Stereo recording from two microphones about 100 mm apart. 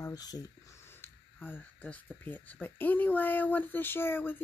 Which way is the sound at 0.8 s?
20° left (ahead or behind).